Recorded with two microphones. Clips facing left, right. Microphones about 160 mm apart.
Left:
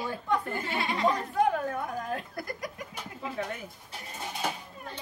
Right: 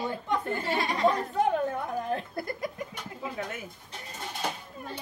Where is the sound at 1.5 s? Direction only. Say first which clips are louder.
Right 2 dB; 25° right (ahead or behind).